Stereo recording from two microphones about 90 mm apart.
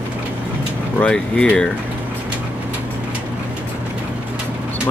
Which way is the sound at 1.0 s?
10° left (ahead or behind).